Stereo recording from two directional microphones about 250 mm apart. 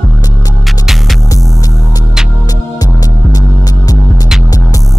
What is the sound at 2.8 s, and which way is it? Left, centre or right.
Music, centre.